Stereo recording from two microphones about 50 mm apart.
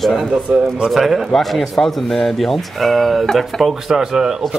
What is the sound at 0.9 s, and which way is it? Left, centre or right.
Speech, centre.